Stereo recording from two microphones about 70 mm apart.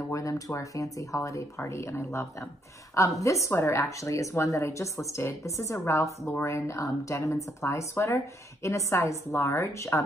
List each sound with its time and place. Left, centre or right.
0.1 s speech: left